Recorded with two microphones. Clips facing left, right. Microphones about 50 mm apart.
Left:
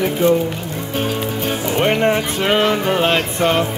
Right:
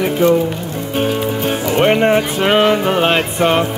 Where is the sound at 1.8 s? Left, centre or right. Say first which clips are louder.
Right 4 dB; centre.